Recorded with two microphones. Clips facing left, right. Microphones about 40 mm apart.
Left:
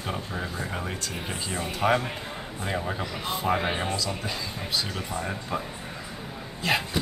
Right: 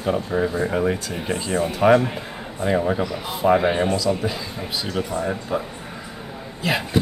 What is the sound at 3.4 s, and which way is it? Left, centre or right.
Speech, centre.